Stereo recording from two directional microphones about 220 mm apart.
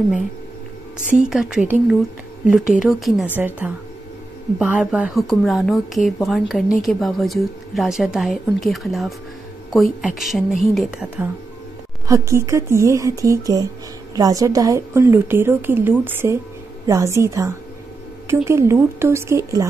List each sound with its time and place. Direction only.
1.3 s a woman's voice: 5° right (ahead or behind)
12.1 s a woman's voice: 10° right (ahead or behind)